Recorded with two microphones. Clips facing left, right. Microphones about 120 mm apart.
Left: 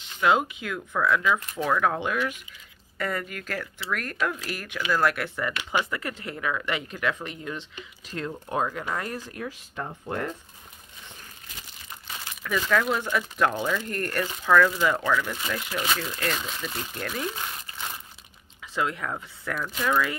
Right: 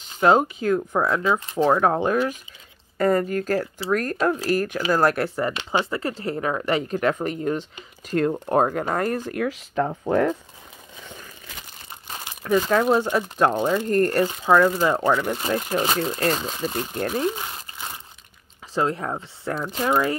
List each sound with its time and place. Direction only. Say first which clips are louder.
0.0 s speech: right 5 dB; 40° right (ahead or behind); by 10.3 s 90° right
12.4 s speech: right 6 dB; 35° right (ahead or behind)
18.8 s speech: right 5 dB; 35° right (ahead or behind)